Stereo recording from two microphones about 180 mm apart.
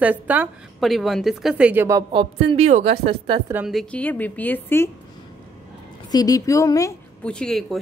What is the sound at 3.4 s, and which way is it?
Speech, 10° right (ahead or behind).